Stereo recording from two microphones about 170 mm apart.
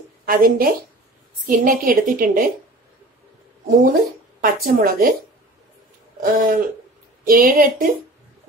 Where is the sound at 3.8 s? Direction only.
55° right (ahead or behind).